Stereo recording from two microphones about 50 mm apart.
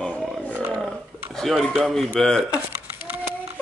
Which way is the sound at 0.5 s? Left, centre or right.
Right.